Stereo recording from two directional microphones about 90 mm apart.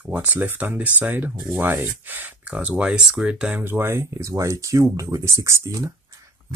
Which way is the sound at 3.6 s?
25° right (ahead or behind).